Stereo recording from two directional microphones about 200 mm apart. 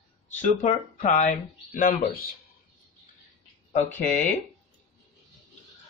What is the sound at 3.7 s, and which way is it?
Speech, 35° left (ahead or behind).